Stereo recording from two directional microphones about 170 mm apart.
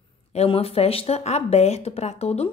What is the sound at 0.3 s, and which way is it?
A woman's voice, 35° left (ahead or behind).